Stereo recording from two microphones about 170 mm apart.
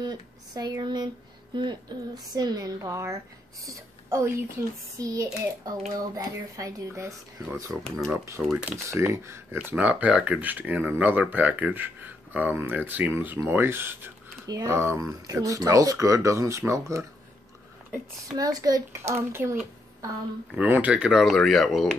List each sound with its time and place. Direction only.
0.0 s a woman's voice: 25° right (ahead or behind)
7.8 s speech: 5° left (ahead or behind)
8.1 s speech: 10° right (ahead or behind)
18.3 s speech: 20° right (ahead or behind)
20.5 s speech: 10° right (ahead or behind)